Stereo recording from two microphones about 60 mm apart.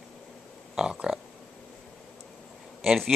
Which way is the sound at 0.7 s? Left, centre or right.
Centre.